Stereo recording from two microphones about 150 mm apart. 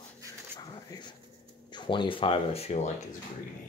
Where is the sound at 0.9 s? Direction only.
25° left (ahead or behind).